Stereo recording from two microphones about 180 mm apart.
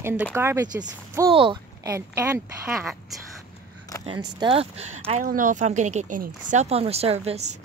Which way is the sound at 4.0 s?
25° right (ahead or behind).